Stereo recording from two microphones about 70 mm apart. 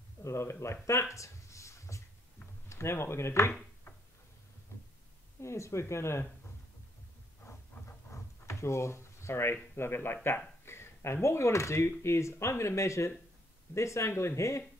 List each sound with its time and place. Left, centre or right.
0.2 s speech: left
1.1 s a sound: left
2.7 s speech: left
5.4 s speech: left
7.8 s a sound: left
8.1 s speech: left